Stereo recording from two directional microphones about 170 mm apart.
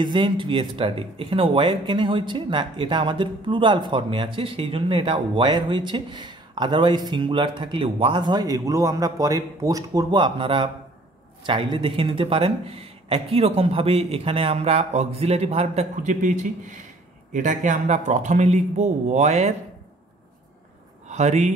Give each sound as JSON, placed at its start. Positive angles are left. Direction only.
{"t": 0.0, "sound": "a man's voice", "side_deg": -30}
{"t": 21.1, "sound": "speech", "side_deg": -40}